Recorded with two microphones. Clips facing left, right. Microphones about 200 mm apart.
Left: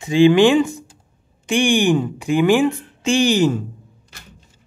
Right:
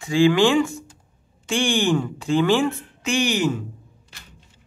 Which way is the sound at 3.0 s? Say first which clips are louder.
Left 6 dB; 30° left (ahead or behind).